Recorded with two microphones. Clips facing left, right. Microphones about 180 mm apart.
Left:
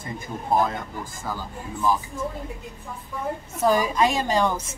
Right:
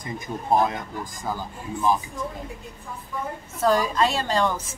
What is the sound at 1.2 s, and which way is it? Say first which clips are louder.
Speech: right 2 dB; 15° right (ahead or behind).